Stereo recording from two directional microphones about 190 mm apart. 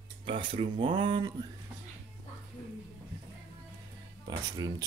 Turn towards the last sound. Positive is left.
turn(degrees=-20)  # may be behind; listen again after turning